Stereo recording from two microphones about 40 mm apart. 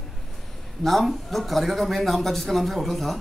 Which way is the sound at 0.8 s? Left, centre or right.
Centre.